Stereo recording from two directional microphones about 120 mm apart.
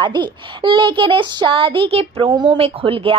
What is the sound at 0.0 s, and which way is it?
A child's voice, 40° right (ahead or behind).